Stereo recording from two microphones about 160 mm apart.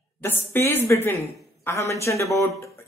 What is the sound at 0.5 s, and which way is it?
A man's voice, 15° left (ahead or behind).